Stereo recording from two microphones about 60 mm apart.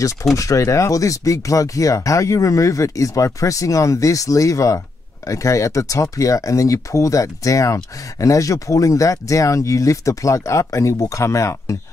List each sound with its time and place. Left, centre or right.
0.4 s speech: left